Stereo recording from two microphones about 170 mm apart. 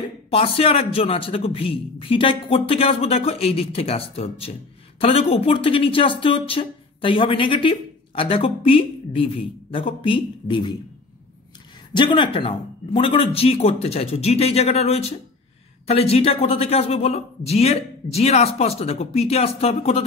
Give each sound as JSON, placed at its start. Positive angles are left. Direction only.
{"t": 0.3, "sound": "speech", "side_deg": 35}
{"t": 11.9, "sound": "speech", "side_deg": 25}